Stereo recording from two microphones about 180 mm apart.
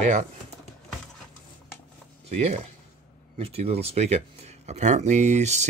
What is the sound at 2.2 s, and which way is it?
Speech, 35° right (ahead or behind).